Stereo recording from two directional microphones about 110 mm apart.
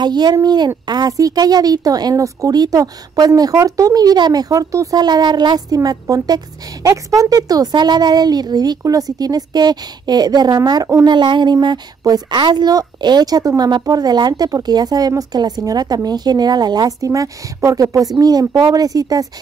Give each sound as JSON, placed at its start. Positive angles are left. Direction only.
{"t": 0.0, "sound": "speech", "side_deg": -40}